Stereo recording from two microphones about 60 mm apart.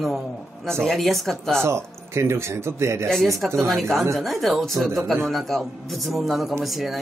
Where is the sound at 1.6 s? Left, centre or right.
Right.